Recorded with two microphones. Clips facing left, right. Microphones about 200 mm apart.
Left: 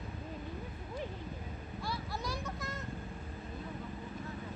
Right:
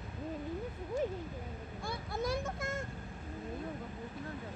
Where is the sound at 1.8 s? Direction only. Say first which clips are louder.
Right 3 dB; 50° right (ahead or behind).